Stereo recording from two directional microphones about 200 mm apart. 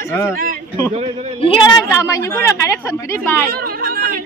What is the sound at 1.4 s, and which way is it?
Speech, 25° left (ahead or behind).